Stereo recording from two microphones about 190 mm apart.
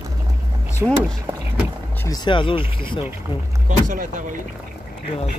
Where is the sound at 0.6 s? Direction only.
10° right (ahead or behind).